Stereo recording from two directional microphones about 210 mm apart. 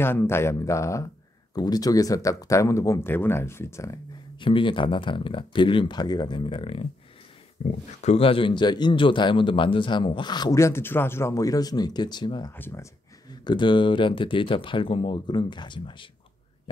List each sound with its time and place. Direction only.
0.0 s speech: 10° left (ahead or behind)
13.4 s speech: 20° left (ahead or behind)
16.7 s a sound: 25° left (ahead or behind)